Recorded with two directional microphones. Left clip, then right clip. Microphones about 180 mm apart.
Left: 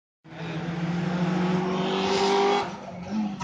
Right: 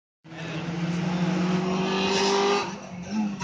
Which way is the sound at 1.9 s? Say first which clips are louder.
Left 1 dB; centre (ahead or behind).